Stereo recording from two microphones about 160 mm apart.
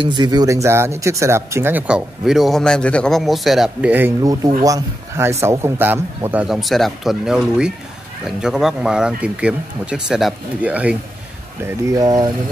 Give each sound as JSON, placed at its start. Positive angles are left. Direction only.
{"t": 0.0, "sound": "speech", "side_deg": -30}
{"t": 4.2, "sound": "speech", "side_deg": -25}
{"t": 11.6, "sound": "speech", "side_deg": -20}